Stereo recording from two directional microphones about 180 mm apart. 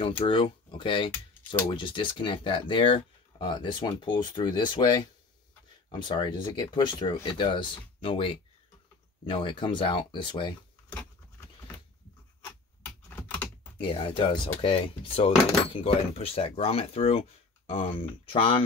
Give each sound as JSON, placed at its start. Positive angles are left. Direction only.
{"t": 0.2, "sound": "speech", "side_deg": 30}
{"t": 5.9, "sound": "speech", "side_deg": 25}
{"t": 12.8, "sound": "computer keyboard", "side_deg": 10}
{"t": 13.7, "sound": "speech", "side_deg": 30}